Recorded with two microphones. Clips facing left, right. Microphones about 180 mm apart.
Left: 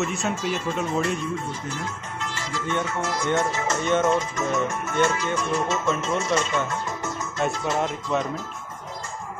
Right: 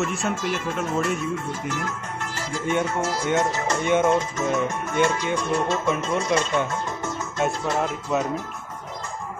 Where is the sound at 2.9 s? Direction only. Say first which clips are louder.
Right 2 dB; 30° right (ahead or behind).